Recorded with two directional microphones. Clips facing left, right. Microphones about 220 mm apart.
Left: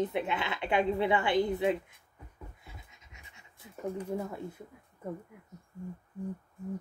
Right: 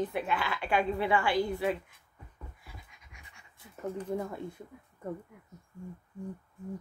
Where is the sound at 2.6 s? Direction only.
25° left (ahead or behind).